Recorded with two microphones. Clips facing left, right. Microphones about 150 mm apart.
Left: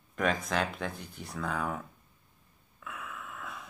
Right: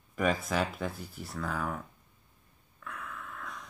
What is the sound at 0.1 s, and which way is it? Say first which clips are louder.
Speech: right 1 dB; 5° right (ahead or behind).